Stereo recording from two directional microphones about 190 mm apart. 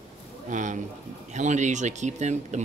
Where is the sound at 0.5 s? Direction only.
40° right (ahead or behind).